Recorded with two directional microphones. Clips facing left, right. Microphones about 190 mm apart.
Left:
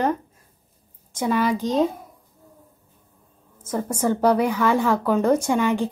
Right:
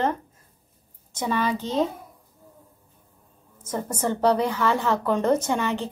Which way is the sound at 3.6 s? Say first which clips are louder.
Left 3 dB; 10° left (ahead or behind).